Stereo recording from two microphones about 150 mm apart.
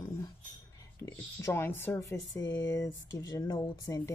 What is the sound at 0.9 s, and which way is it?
Speech, 15° left (ahead or behind).